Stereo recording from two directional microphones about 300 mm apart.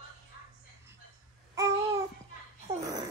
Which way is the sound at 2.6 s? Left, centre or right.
Centre.